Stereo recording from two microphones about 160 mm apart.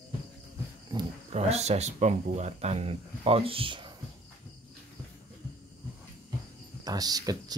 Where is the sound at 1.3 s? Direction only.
40° right (ahead or behind).